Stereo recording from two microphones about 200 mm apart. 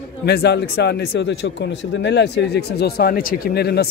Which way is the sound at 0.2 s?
55° left (ahead or behind).